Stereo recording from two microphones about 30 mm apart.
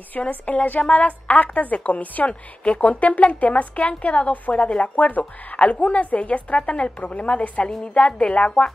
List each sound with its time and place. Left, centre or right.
0.3 s a woman's voice: left
2.2 s a woman's voice: left